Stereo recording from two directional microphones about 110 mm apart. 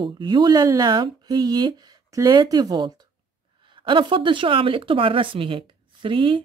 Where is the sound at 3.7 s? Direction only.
50° right (ahead or behind).